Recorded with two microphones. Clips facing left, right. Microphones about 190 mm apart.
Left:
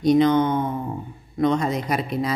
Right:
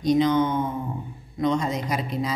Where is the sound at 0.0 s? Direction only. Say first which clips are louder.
Left 3 dB; 60° left (ahead or behind).